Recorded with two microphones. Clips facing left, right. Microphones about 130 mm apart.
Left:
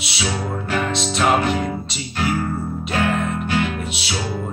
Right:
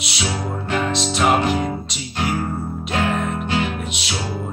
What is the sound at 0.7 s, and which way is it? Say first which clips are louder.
Music: right 1 dB; 30° right (ahead or behind).